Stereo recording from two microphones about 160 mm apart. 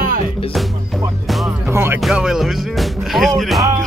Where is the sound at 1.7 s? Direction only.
15° right (ahead or behind).